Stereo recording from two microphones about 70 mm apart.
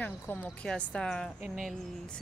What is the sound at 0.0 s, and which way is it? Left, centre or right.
Speech, left.